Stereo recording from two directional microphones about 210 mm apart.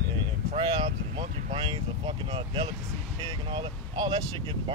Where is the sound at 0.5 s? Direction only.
25° right (ahead or behind).